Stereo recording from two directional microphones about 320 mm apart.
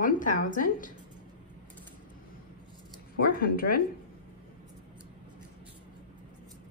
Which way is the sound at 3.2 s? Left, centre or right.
Left.